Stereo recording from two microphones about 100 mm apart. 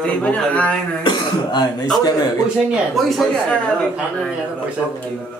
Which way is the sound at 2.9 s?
Centre (ahead or behind).